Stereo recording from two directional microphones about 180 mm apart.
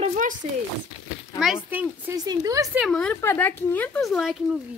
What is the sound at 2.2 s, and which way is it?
Speech, 20° right (ahead or behind).